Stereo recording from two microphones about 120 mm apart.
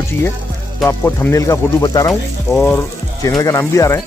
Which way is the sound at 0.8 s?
20° left (ahead or behind).